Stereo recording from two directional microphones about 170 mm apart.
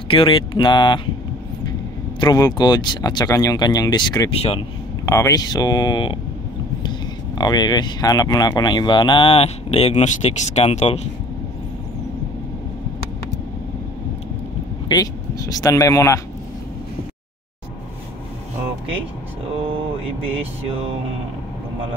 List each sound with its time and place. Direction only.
0.1 s speech: 30° left (ahead or behind)
4.3 s speech: 35° left (ahead or behind)
5.0 s speech: 20° left (ahead or behind)
7.3 s speech: 25° left (ahead or behind)
14.9 s speech: 20° left (ahead or behind)